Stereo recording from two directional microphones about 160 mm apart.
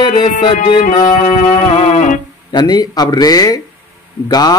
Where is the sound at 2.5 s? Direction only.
25° left (ahead or behind).